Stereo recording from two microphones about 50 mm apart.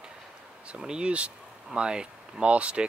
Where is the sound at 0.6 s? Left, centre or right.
Centre.